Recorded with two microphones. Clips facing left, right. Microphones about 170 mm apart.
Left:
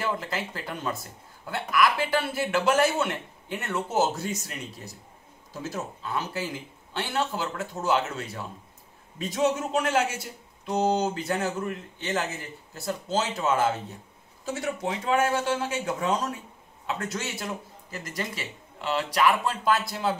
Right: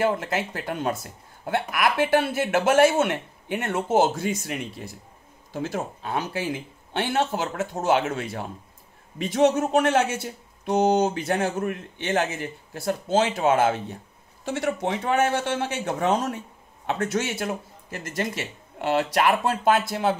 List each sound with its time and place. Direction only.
0.3 s speech: 60° right (ahead or behind)
16.8 s speech: 65° right (ahead or behind)